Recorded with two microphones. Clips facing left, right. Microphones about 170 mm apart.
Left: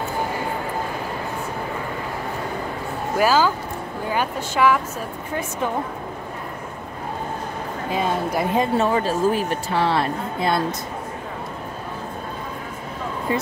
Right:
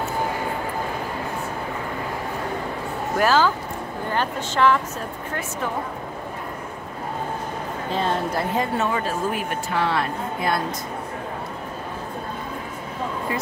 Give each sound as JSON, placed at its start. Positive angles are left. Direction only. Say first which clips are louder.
{"t": 3.2, "sound": "speech", "louder": "left 1 dB", "side_deg": 5}
{"t": 7.9, "sound": "speech", "louder": "left 1 dB", "side_deg": 10}
{"t": 8.7, "sound": "a woman's voice", "louder": "left 4 dB", "side_deg": 30}